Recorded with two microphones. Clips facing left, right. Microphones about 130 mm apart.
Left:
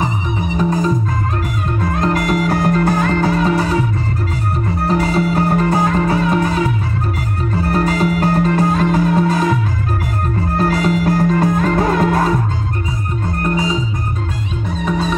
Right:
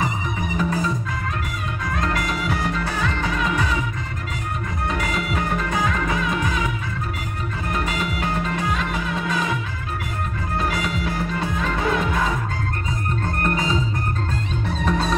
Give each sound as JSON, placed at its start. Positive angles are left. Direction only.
{"t": 1.8, "sound": "music", "side_deg": 35}
{"t": 4.8, "sound": "music", "side_deg": 35}
{"t": 10.6, "sound": "music", "side_deg": 40}
{"t": 13.4, "sound": "organ", "side_deg": 15}
{"t": 14.9, "sound": "music", "side_deg": 5}